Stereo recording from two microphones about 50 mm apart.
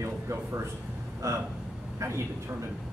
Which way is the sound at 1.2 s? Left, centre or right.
Right.